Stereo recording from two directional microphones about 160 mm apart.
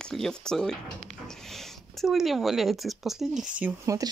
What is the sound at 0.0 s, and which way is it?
Speech, 5° left (ahead or behind).